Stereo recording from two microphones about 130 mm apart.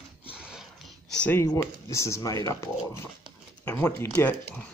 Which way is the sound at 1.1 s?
10° left (ahead or behind).